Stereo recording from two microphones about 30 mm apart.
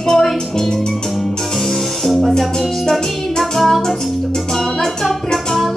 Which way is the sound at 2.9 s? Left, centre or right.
Centre.